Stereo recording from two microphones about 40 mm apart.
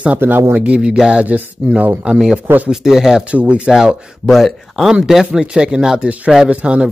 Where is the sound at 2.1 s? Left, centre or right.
Centre.